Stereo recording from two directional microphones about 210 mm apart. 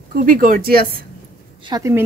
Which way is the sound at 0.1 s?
40° right (ahead or behind).